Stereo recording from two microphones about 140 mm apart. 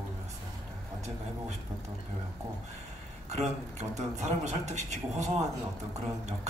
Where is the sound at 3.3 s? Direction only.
55° right (ahead or behind).